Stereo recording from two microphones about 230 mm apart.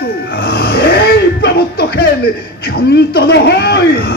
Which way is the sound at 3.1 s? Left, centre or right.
Left.